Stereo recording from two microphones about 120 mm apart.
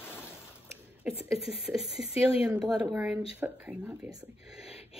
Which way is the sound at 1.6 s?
5° right (ahead or behind).